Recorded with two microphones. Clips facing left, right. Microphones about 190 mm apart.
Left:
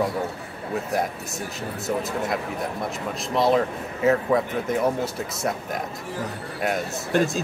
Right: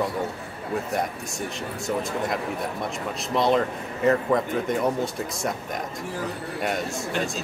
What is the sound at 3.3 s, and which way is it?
Speech, 5° left (ahead or behind).